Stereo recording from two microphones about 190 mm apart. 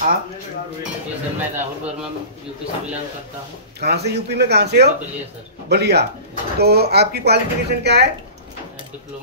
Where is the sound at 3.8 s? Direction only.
60° right (ahead or behind).